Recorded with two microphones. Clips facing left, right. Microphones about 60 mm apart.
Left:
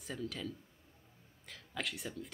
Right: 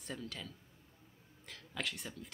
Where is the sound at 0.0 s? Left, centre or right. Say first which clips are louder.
Left 4 dB; centre.